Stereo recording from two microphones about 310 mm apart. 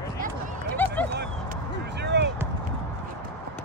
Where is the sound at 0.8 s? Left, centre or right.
Centre.